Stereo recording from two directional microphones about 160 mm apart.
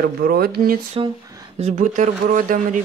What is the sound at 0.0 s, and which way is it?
Speech, 65° right (ahead or behind).